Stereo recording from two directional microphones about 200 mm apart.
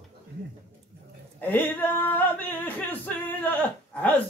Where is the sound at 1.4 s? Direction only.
10° left (ahead or behind).